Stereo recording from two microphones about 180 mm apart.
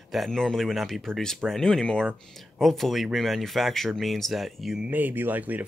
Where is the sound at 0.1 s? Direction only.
Centre (ahead or behind).